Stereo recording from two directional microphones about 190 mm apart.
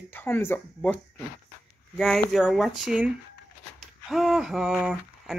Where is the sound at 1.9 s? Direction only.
5° left (ahead or behind).